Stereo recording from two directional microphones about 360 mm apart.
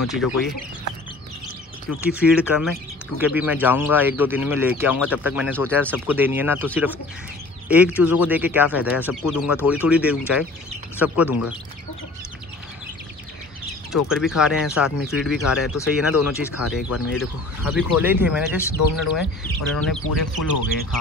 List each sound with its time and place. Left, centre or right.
0.1 s speech: centre
1.9 s speech: centre
14.0 s speech: centre
16.9 s speech: left
17.6 s speech: centre